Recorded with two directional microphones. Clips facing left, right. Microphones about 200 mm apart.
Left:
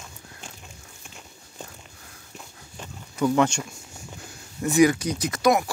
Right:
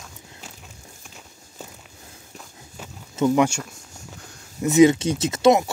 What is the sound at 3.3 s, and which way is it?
Speech, 5° right (ahead or behind).